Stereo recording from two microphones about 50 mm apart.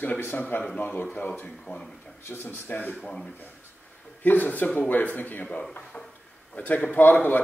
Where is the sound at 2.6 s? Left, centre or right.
Left.